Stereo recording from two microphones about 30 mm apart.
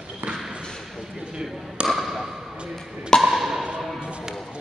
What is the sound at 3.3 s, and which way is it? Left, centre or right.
Speech, centre.